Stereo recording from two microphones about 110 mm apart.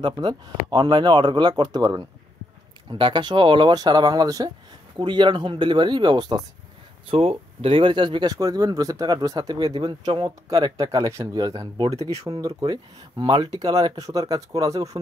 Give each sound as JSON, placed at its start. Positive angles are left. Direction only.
{"t": 0.0, "sound": "speech", "side_deg": -40}
{"t": 7.1, "sound": "speech", "side_deg": -60}